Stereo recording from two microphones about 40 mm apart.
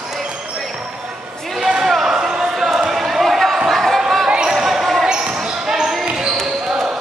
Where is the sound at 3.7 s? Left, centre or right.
Centre.